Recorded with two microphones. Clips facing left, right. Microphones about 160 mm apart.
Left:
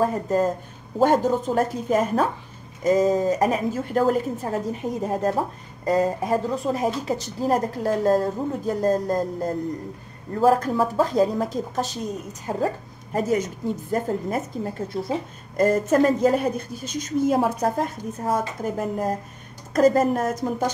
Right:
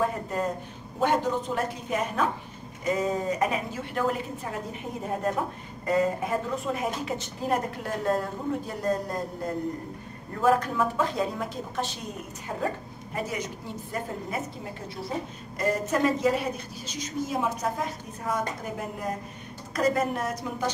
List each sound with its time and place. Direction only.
0.0 s a woman's voice: 35° left (ahead or behind)